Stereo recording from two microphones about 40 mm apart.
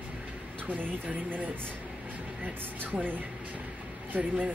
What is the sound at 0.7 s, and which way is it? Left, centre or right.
Speech, right.